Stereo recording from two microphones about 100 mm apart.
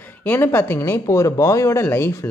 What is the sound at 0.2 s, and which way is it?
Speech, 20° left (ahead or behind).